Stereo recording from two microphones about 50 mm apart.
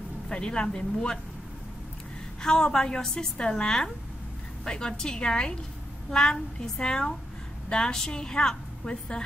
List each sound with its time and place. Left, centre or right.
0.3 s a woman's voice: centre
2.4 s a woman's voice: centre